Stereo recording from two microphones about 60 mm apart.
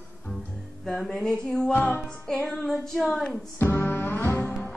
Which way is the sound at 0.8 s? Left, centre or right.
Centre.